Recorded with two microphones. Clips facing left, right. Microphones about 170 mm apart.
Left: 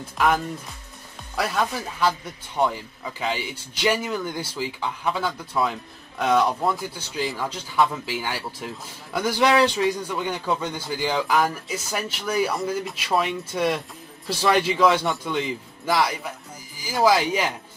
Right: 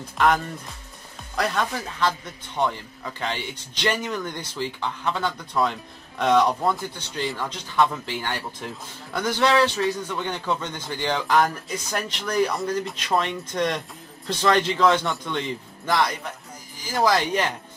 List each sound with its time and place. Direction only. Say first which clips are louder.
0.2 s speech: right 1 dB; 5° left (ahead or behind)